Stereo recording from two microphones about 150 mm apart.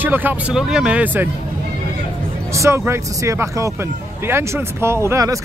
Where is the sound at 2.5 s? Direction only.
20° right (ahead or behind).